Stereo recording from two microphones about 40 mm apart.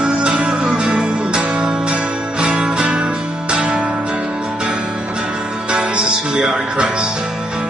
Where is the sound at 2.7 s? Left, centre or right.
Centre.